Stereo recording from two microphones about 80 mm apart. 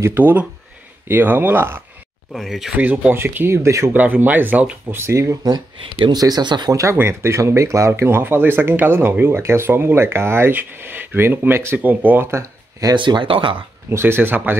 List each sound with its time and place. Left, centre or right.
0.0 s speech: right
2.3 s speech: centre
2.7 s speech: right
3.9 s speech: right
4.9 s speech: right
6.7 s speech: right
12.9 s speech: right
13.8 s speech: right